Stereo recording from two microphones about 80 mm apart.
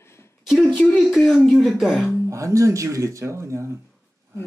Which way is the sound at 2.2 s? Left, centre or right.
Right.